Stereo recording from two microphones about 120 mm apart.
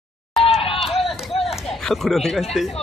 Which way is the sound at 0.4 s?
50° left (ahead or behind).